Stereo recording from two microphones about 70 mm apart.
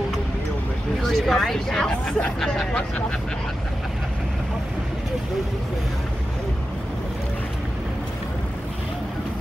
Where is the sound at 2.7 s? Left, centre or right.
Centre.